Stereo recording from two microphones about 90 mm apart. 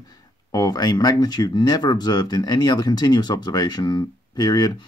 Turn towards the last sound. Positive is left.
turn(degrees=45)  # may be behind; listen again after turning